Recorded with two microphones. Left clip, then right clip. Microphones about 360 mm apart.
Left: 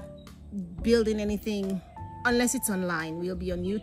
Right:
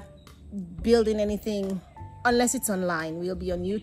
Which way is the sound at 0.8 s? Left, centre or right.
Centre.